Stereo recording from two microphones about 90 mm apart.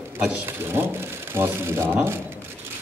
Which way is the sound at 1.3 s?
25° right (ahead or behind).